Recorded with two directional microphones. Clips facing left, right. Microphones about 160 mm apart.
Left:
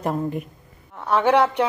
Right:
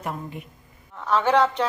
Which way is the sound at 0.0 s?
45° left (ahead or behind).